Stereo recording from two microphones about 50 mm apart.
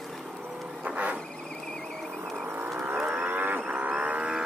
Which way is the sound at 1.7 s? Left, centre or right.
Centre.